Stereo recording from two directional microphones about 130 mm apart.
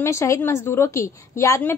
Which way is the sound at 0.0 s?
20° left (ahead or behind).